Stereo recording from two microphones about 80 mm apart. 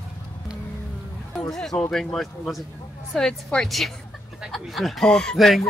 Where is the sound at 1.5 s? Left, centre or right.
Centre.